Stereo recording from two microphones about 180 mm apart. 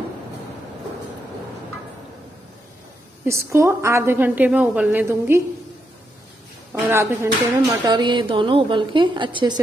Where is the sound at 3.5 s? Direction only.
15° right (ahead or behind).